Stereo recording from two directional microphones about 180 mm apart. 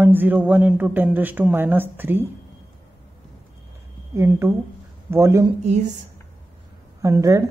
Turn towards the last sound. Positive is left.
turn(degrees=-15)  # may be behind; listen again after turning